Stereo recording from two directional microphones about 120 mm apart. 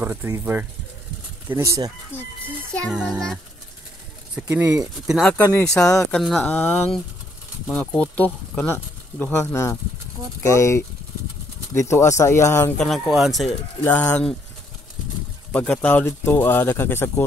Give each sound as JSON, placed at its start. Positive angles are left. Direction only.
{"t": 0.0, "sound": "speech", "side_deg": -15}
{"t": 2.1, "sound": "speech", "side_deg": 15}
{"t": 2.9, "sound": "speech", "side_deg": -5}
{"t": 4.5, "sound": "speech", "side_deg": -20}
{"t": 4.7, "sound": "speech", "side_deg": -5}
{"t": 5.5, "sound": "speech", "side_deg": 10}
{"t": 6.4, "sound": "speech", "side_deg": 15}
{"t": 12.7, "sound": "speech", "side_deg": 5}
{"t": 13.7, "sound": "speech", "side_deg": 10}
{"t": 15.5, "sound": "speech", "side_deg": 10}